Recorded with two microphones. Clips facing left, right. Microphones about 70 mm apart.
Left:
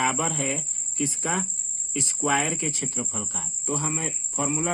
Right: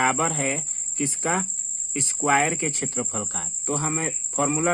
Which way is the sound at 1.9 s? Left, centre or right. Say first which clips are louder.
Right 3 dB; right.